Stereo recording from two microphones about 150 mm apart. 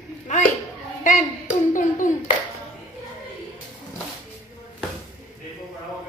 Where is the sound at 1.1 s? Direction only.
60° left (ahead or behind).